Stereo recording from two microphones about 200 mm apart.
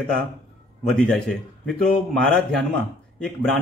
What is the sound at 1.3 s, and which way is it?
A man's voice, 5° left (ahead or behind).